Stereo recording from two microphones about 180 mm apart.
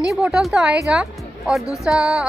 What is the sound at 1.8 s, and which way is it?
Speech, 5° right (ahead or behind).